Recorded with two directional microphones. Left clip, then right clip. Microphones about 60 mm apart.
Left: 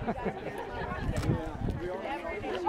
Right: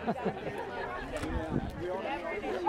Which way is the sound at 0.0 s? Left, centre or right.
Right.